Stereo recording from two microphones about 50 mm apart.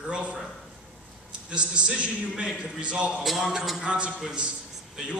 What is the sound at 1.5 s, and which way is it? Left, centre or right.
A man's voice, right.